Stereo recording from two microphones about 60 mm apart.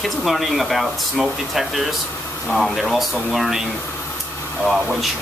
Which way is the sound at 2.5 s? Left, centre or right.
Centre.